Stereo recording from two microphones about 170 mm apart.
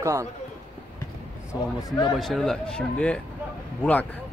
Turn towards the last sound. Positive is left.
turn(degrees=10)  # may be behind; listen again after turning